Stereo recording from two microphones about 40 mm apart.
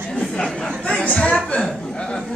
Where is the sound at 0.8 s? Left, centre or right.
Left.